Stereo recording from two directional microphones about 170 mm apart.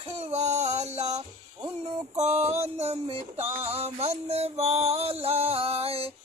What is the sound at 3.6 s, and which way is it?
Music, 40° right (ahead or behind).